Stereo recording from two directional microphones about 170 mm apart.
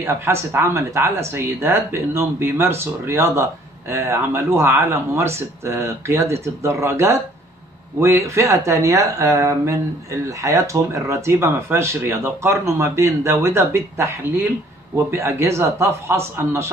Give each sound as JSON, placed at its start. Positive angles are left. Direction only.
{"t": 0.0, "sound": "speech", "side_deg": -15}